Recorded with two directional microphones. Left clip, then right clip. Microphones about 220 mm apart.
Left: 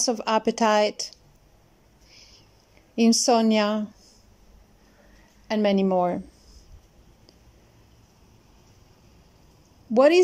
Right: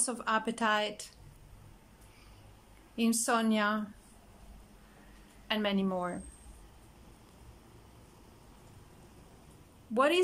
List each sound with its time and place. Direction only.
0.0 s speech: 25° left (ahead or behind)
3.3 s speech: 25° left (ahead or behind)
5.5 s speech: 25° left (ahead or behind)
9.9 s speech: 25° left (ahead or behind)